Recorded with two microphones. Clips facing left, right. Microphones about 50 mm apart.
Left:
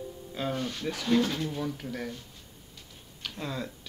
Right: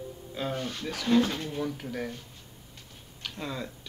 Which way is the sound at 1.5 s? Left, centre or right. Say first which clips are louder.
Right 1 dB; centre.